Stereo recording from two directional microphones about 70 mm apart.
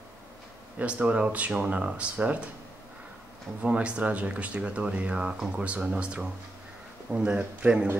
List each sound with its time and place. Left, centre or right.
0.7 s speech: centre
3.6 s speech: centre